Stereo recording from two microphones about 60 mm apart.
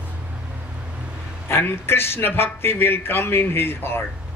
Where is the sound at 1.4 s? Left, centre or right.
Left.